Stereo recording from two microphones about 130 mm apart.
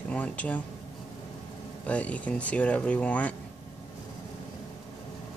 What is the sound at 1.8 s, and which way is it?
Speech, 10° left (ahead or behind).